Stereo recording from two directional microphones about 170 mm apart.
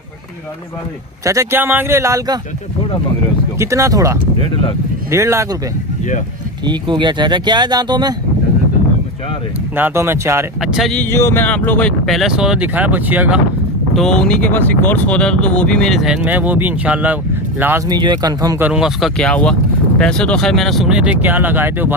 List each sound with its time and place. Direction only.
1.2 s speech: 20° right (ahead or behind)
3.5 s speech: 15° right (ahead or behind)
6.6 s speech: 25° right (ahead or behind)
9.8 s speech: 15° right (ahead or behind)
10.6 s speech: centre (ahead or behind)
13.9 s speech: 5° left (ahead or behind); by 17.8 s 10° right (ahead or behind)
17.8 s speech: 25° right (ahead or behind)
18.6 s speech: 5° right (ahead or behind)